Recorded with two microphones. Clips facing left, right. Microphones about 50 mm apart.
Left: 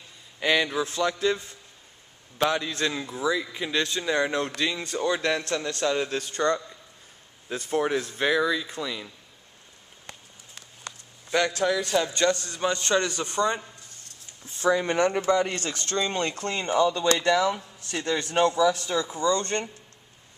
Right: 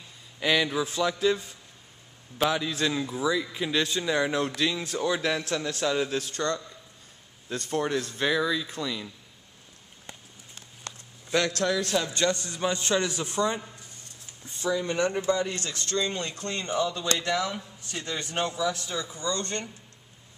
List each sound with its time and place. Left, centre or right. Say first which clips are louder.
0.4 s a man's voice: left 1 dB; centre
7.4 s a man's voice: left 3 dB; centre
10.8 s a sound: left 1 dB; centre
12.3 s a man's voice: left 2 dB; centre
14.6 s speech: left 4 dB; left
15.1 s a man's voice: left 3 dB; left
16.0 s a man's voice: left 4 dB; left
19.3 s speech: left 5 dB; left